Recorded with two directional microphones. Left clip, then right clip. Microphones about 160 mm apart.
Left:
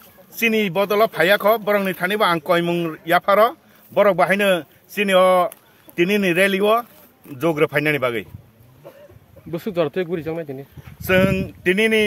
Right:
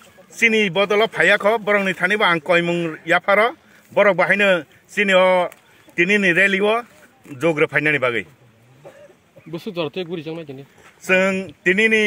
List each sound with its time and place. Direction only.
0.4 s speech: 5° left (ahead or behind)
9.5 s speech: 40° left (ahead or behind)
11.0 s speech: 15° left (ahead or behind)